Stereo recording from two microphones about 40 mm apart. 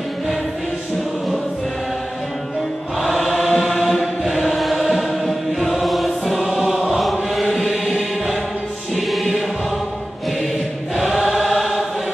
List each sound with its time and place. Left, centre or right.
3.3 s chant: centre
4.6 s choir: centre
7.0 s chant: centre
7.8 s music: centre
11.0 s choir: centre